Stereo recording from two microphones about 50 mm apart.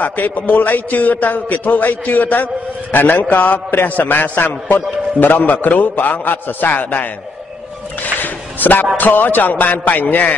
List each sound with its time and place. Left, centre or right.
0.0 s a man's voice: left
8.2 s a sound: left
8.9 s a man's voice: left